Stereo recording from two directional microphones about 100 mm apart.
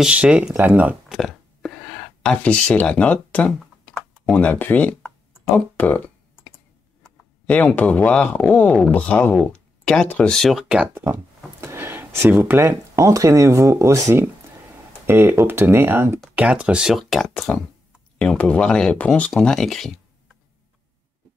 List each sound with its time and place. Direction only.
0.0 s speech: 10° right (ahead or behind)
1.1 s a sound: centre (ahead or behind)
2.4 s speech: 10° left (ahead or behind)
7.4 s speech: 15° left (ahead or behind)
10.6 s speech: 10° right (ahead or behind)
11.6 s speech: 25° right (ahead or behind); by 17.5 s centre (ahead or behind)
18.2 s speech: 10° left (ahead or behind)